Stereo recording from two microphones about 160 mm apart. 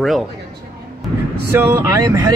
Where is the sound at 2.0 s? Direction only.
25° right (ahead or behind).